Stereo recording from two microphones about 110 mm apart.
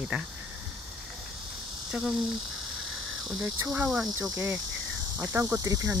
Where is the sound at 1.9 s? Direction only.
5° right (ahead or behind).